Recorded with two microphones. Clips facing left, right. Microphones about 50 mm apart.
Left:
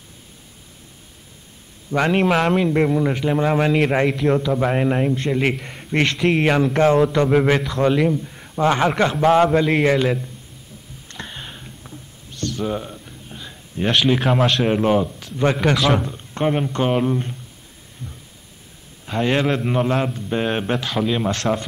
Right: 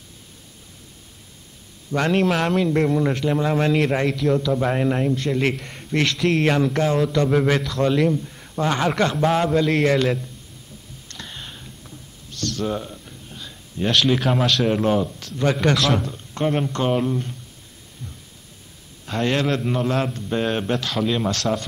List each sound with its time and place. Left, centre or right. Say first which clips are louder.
1.9 s a man's voice: left 2 dB; centre
5.4 s a man's voice: left 1 dB; centre
7.3 s a man's voice: left 2 dB; centre
11.1 s a sound: left 3 dB; left
15.0 s a man's voice: left 2 dB; centre
16.0 s a man's voice: left 2 dB; centre
19.0 s a man's voice: left 2 dB; centre
20.0 s a man's voice: left 1 dB; centre